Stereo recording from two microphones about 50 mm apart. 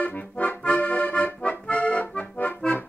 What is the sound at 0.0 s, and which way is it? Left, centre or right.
Accordion, left.